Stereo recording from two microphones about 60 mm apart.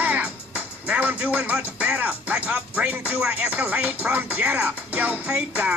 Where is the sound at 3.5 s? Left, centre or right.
Right.